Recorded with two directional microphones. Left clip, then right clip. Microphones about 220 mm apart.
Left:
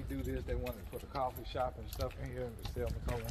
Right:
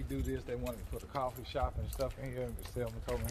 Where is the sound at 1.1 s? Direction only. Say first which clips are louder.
Right 1 dB; 45° right (ahead or behind).